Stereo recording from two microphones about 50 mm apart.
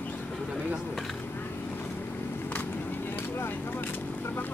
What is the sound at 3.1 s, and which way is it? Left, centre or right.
Speech, left.